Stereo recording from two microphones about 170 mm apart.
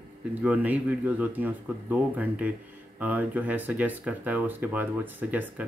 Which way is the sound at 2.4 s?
10° right (ahead or behind).